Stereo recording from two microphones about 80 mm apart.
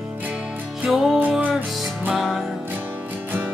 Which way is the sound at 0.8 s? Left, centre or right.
Centre.